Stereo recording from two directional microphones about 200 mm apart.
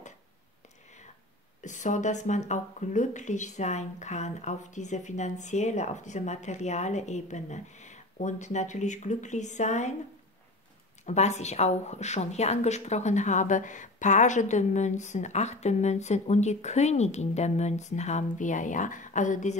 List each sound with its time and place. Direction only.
1.6 s a woman's voice: 40° left (ahead or behind)
11.1 s a woman's voice: 35° left (ahead or behind)